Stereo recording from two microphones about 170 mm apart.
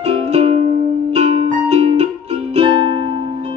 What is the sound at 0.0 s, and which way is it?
Music, 35° right (ahead or behind).